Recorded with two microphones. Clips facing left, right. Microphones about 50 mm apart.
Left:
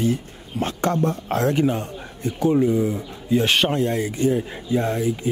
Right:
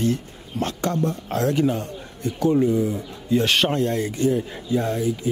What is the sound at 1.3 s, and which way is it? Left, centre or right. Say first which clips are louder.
Speech: even; left.